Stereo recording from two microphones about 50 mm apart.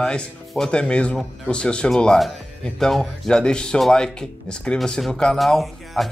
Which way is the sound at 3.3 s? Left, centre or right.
Centre.